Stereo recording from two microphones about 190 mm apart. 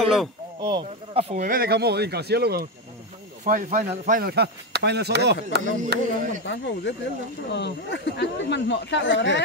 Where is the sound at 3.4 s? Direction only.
45° right (ahead or behind); by 5.6 s 60° right (ahead or behind).